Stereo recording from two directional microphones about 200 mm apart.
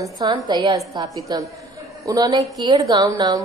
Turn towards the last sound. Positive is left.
turn(degrees=-20)  # may be behind; listen again after turning